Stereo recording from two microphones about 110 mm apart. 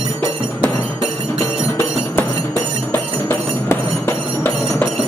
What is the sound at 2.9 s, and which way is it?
Music, 20° left (ahead or behind).